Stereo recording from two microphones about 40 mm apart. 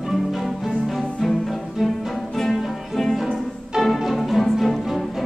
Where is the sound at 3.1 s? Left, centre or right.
Centre.